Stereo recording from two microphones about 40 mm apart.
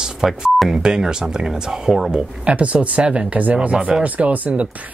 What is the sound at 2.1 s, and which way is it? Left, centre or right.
Speech, right.